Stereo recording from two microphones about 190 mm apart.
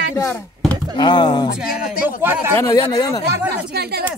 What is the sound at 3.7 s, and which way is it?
Speech, 55° right (ahead or behind).